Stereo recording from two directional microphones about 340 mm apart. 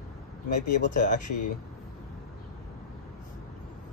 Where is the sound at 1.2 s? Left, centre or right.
Left.